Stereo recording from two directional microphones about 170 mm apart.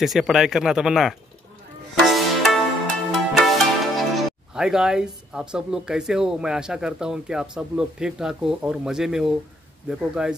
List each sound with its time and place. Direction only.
0.0 s speech: centre (ahead or behind)
2.0 s music: centre (ahead or behind)
3.1 s speech: centre (ahead or behind)